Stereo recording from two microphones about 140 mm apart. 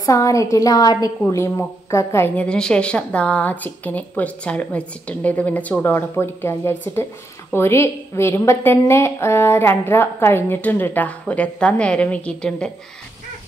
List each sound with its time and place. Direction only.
0.0 s a woman's voice: 25° left (ahead or behind); by 12.7 s 5° left (ahead or behind)